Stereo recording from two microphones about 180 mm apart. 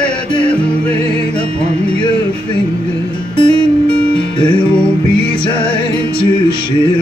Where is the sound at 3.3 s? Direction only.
25° left (ahead or behind).